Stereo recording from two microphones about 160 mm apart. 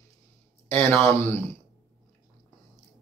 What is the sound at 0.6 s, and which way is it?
Speech, 10° left (ahead or behind).